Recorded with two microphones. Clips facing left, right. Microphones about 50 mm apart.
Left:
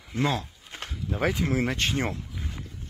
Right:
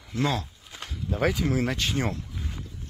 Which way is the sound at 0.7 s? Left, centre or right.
Left.